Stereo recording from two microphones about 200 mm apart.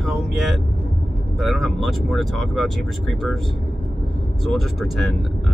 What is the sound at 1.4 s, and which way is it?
Speech, centre (ahead or behind).